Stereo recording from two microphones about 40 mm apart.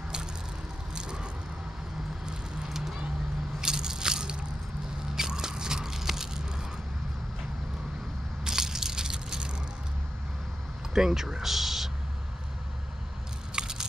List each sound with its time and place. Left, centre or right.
0.9 s vehicle: right
3.6 s biting: centre
8.5 s crushing: centre
10.9 s speech: centre
13.5 s a sound: centre